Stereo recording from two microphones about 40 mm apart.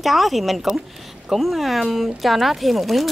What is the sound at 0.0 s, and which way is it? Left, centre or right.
Speech, centre.